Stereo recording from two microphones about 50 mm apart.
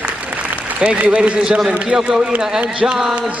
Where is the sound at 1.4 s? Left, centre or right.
Centre.